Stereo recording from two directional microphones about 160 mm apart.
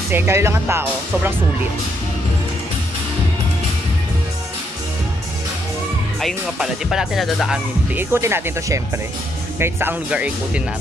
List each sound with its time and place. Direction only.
0.1 s speech: 15° right (ahead or behind)
6.2 s music: 5° right (ahead or behind)
8.0 s speech: 15° right (ahead or behind)